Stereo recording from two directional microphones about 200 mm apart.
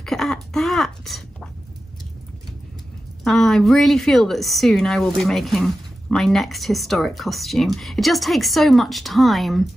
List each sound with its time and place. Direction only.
0.0 s throat clearing: centre (ahead or behind)
3.3 s a woman's voice: centre (ahead or behind)